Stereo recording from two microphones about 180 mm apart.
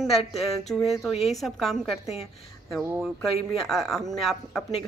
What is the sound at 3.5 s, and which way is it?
Speech, centre (ahead or behind).